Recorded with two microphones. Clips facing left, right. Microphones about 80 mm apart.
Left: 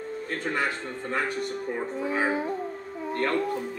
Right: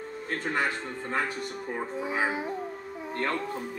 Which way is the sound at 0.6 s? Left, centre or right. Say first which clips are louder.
Even; right.